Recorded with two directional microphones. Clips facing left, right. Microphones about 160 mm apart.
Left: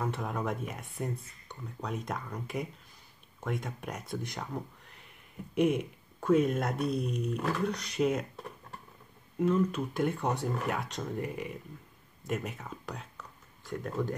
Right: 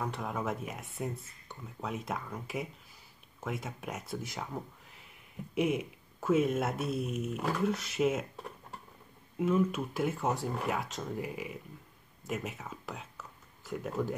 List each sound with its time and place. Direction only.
0.0 s speech: centre (ahead or behind)
9.4 s speech: 5° right (ahead or behind)